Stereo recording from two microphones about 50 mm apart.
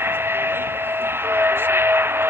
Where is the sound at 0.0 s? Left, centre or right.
Right.